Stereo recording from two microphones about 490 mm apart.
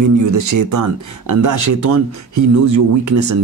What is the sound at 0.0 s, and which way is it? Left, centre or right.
Speech, right.